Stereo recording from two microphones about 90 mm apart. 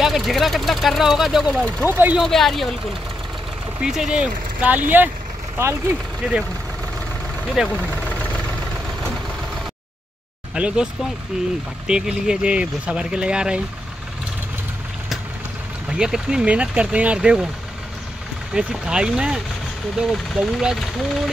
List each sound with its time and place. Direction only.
0.0 s speech: centre (ahead or behind)
1.9 s speech: 20° right (ahead or behind)
2.2 s speech: 5° left (ahead or behind)
3.8 s speech: 5° right (ahead or behind); by 5.9 s 30° right (ahead or behind)
7.6 s speech: 5° right (ahead or behind)
10.5 s speech: 10° right (ahead or behind)
11.9 s speech: 10° right (ahead or behind)
15.9 s speech: 10° right (ahead or behind)
18.5 s speech: 10° right (ahead or behind)